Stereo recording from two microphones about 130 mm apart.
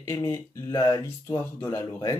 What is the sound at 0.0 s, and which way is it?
Speech, 20° left (ahead or behind).